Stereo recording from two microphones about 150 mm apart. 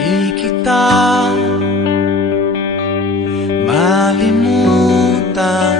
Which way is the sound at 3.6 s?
Centre (ahead or behind).